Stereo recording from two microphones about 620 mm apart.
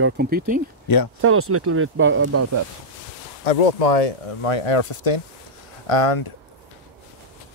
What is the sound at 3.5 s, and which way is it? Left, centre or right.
Speech, left.